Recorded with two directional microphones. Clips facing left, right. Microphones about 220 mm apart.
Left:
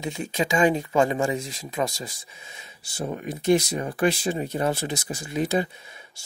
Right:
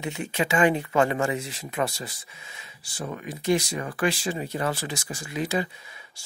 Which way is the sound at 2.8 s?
25° left (ahead or behind).